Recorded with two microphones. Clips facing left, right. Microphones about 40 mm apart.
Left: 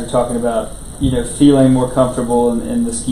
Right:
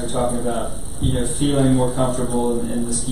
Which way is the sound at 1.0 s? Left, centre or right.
Left.